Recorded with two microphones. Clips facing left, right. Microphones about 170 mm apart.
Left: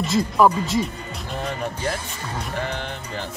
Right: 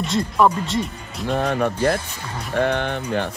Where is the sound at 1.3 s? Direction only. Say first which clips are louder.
Right 8 dB; 65° right (ahead or behind).